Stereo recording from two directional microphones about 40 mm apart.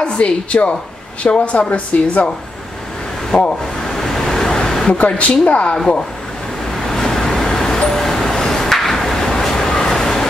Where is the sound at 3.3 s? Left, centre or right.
Centre.